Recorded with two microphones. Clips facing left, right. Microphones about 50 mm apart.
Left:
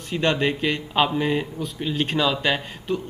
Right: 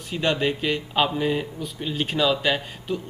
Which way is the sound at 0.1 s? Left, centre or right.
Centre.